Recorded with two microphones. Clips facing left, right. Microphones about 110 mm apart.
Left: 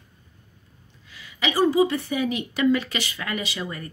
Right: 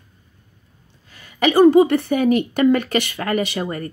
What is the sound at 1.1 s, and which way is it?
A woman's voice, 45° right (ahead or behind).